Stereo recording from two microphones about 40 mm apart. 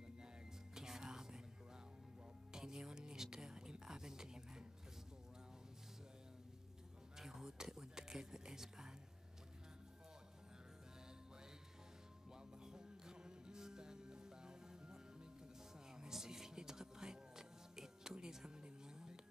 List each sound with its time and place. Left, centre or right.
0.7 s music: centre
2.5 s music: centre
7.2 s speech: centre
12.3 s music: centre